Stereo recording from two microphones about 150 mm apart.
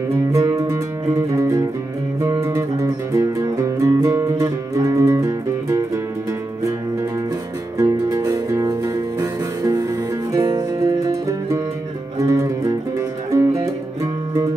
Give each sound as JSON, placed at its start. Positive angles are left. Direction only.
{"t": 0.1, "sound": "music", "side_deg": -20}
{"t": 7.7, "sound": "music", "side_deg": -20}